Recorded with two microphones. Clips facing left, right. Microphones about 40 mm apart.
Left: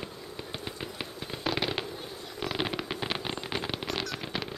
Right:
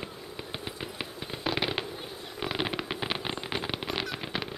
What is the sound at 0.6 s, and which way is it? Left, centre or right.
Firecracker, centre.